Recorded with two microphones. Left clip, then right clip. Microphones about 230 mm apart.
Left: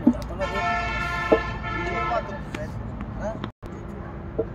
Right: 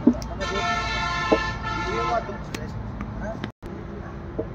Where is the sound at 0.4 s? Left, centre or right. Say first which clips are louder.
Even; right.